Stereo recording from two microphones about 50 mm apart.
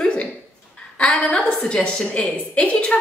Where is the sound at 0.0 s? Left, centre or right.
Centre.